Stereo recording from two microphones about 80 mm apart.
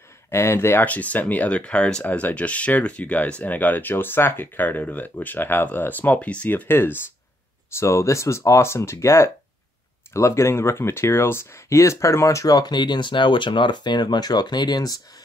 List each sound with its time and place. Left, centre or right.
0.3 s speech: left
0.8 s speech: centre
7.7 s speech: left
12.5 s speech: left